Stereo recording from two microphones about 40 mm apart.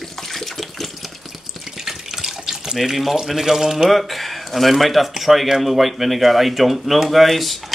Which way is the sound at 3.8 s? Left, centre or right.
Centre.